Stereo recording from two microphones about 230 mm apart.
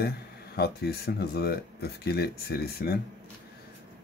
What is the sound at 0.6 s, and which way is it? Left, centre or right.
Speech, left.